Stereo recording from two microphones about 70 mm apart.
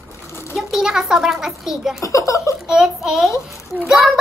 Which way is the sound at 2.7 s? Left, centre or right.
Centre.